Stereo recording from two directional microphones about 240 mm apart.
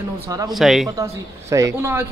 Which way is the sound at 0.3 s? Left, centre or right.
Centre.